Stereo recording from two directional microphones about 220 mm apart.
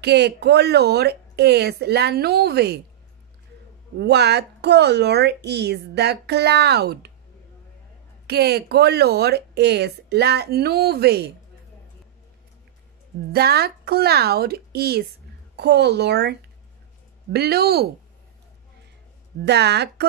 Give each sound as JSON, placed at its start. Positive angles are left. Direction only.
{"t": 0.0, "sound": "speech", "side_deg": -50}
{"t": 4.0, "sound": "speech", "side_deg": -50}
{"t": 8.3, "sound": "speech", "side_deg": -45}
{"t": 13.3, "sound": "speech", "side_deg": -45}
{"t": 19.4, "sound": "speech", "side_deg": -50}